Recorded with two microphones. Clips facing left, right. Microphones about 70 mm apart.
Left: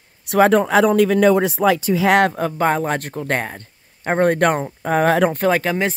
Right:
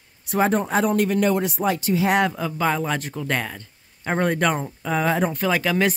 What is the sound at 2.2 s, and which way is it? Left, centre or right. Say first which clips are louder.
Speech: left 5 dB; left.